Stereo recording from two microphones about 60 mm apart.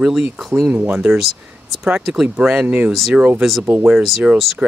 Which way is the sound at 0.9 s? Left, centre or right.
Centre.